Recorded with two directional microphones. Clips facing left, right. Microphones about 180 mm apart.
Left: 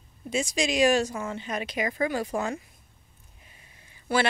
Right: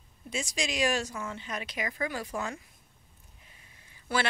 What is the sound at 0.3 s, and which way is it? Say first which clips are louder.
Speech: left 7 dB; 20° left (ahead or behind).